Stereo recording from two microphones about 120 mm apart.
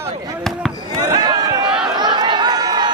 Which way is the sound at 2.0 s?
40° right (ahead or behind).